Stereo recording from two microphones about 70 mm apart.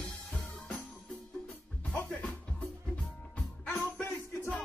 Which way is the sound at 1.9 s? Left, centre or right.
Centre.